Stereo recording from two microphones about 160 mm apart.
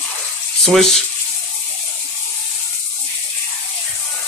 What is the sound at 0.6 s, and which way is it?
Speech, centre (ahead or behind).